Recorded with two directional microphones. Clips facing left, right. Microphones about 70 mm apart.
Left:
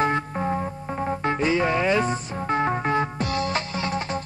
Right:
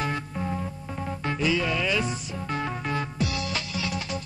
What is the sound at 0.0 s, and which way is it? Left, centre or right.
Music, left.